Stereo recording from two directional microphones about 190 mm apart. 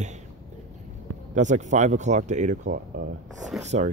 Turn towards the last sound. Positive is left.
turn(degrees=0)  # may be behind; listen again after turning